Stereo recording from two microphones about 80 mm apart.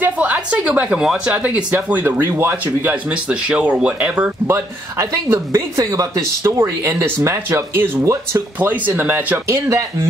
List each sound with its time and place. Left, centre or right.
0.0 s speech: centre
4.5 s speech: right